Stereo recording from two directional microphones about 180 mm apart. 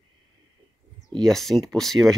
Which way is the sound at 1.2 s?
Centre (ahead or behind).